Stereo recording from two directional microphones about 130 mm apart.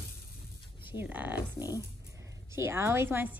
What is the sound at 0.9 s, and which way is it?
Speech, 10° right (ahead or behind).